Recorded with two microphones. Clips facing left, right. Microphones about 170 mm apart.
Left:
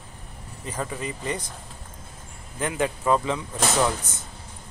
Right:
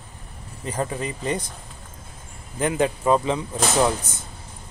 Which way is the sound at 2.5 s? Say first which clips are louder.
Right 4 dB; 25° right (ahead or behind).